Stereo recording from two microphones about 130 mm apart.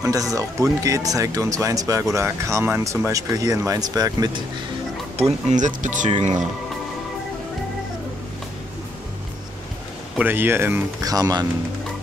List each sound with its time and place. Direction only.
0.0 s speech: 25° right (ahead or behind)
5.5 s speech: 75° right (ahead or behind)
10.1 s speech: 15° right (ahead or behind)
11.0 s speech: 30° right (ahead or behind)